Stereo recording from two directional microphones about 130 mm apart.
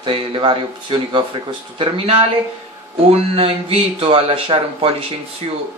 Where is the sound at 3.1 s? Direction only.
50° right (ahead or behind).